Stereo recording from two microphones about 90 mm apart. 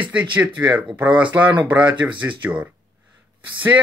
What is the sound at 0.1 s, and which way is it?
Speech, 15° right (ahead or behind).